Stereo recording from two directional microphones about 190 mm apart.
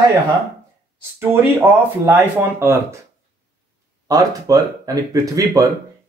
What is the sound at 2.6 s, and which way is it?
Speech, 15° right (ahead or behind).